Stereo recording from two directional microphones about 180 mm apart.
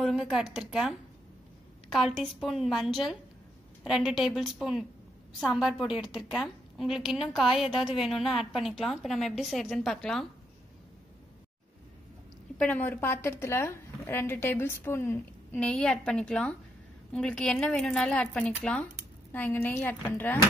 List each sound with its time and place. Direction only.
0.0 s a woman's voice: centre (ahead or behind)
2.0 s a woman's voice: centre (ahead or behind)
12.5 s a woman's voice: 10° left (ahead or behind)